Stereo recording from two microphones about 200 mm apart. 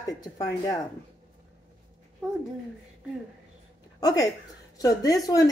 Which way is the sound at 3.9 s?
20° left (ahead or behind).